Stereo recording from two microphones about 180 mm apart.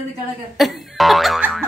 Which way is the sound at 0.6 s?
Centre (ahead or behind).